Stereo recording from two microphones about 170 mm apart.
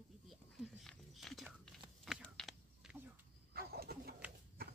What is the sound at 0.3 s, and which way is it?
Whispering, centre (ahead or behind).